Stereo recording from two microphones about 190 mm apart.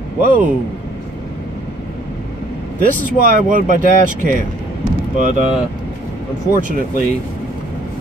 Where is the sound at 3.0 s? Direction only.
45° right (ahead or behind).